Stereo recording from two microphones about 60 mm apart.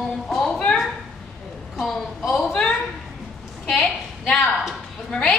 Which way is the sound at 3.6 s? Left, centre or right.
Centre.